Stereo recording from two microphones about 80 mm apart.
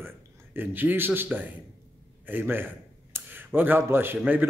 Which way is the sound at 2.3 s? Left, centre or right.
Right.